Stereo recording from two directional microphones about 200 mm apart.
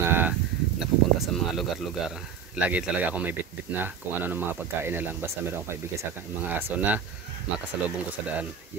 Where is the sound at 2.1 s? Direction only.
5° right (ahead or behind).